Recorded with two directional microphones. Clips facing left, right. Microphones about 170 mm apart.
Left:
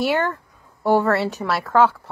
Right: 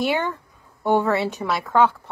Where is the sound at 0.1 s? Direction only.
Centre (ahead or behind).